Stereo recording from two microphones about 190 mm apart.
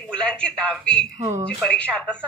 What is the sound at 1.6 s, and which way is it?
Speech, 5° left (ahead or behind).